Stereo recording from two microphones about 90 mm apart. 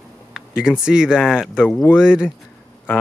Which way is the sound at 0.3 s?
5° right (ahead or behind).